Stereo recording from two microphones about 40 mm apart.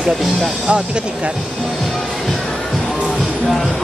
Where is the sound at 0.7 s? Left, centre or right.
Right.